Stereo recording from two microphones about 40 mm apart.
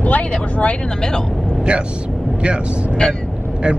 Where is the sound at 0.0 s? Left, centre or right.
Left.